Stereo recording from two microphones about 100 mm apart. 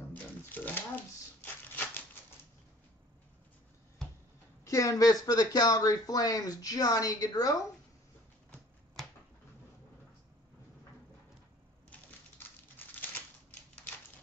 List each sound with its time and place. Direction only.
0.1 s shuffling cards: 20° left (ahead or behind)
4.6 s speech: 30° left (ahead or behind)
12.8 s crumpling: 20° left (ahead or behind)